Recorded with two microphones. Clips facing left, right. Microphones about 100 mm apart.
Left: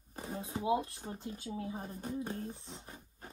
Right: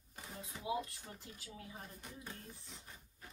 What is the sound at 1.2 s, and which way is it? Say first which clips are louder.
Speech: left 12 dB; 25° left (ahead or behind).